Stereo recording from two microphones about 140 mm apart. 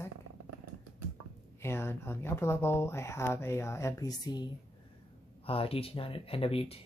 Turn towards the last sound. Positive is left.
turn(degrees=45)  # may be behind; listen again after turning